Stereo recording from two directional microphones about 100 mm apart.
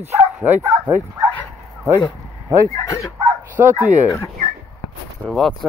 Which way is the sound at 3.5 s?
20° right (ahead or behind).